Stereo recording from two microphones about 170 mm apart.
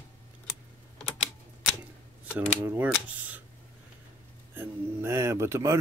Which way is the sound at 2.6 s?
10° right (ahead or behind).